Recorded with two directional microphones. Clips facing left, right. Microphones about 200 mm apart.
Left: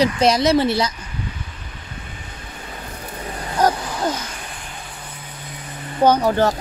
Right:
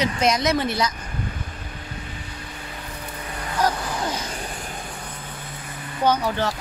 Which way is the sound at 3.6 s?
45° left (ahead or behind).